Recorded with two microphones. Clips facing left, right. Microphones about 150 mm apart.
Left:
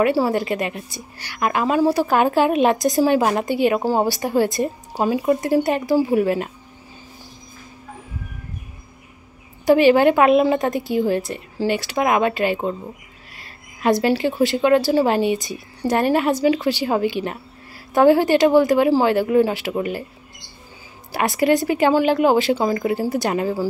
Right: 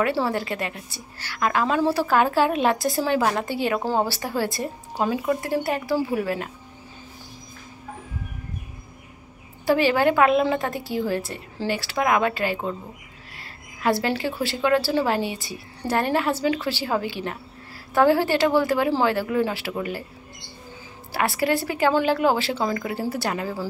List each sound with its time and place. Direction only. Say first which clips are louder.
0.0 s a woman's voice: left 5 dB; 15° left (ahead or behind)
5.2 s a woman's voice: left 6 dB; 25° left (ahead or behind)
9.7 s a woman's voice: left 6 dB; 20° left (ahead or behind)
13.4 s a sound: left 4 dB; 20° left (ahead or behind)
14.2 s a woman's voice: left 6 dB; 20° left (ahead or behind)
21.1 s a woman's voice: left 5 dB; 20° left (ahead or behind)